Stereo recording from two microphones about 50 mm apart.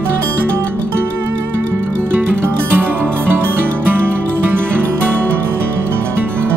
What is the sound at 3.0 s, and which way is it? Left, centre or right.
Music, right.